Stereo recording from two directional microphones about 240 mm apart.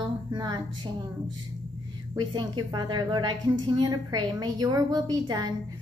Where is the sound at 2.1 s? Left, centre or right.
Centre.